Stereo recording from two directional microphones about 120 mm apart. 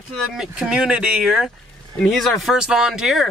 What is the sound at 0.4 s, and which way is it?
Speech, 5° right (ahead or behind).